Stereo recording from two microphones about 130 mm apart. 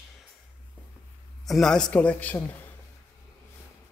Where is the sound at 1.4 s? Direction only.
Centre (ahead or behind).